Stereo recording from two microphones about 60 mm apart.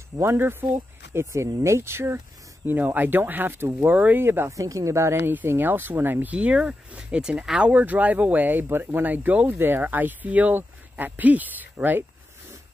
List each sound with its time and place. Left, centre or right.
0.2 s speech: right
1.1 s speech: right
4.2 s speech: right
4.5 s speech: right
6.3 s speech: centre
8.6 s speech: right
9.0 s speech: right
9.6 s speech: right